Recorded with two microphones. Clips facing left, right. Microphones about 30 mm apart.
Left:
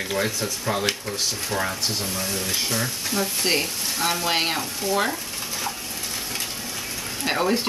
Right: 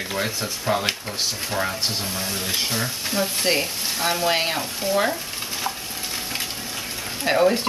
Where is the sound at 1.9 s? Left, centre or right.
Right.